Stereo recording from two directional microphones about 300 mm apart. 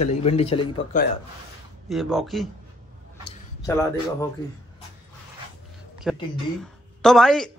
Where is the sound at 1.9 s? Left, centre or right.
Centre.